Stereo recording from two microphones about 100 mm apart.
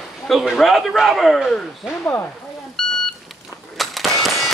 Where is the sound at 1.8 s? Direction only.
20° left (ahead or behind).